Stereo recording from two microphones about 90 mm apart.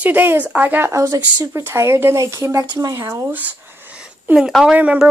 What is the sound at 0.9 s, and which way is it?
Speech, 35° right (ahead or behind).